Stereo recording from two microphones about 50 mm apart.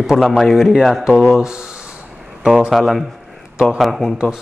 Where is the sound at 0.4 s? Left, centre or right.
Centre.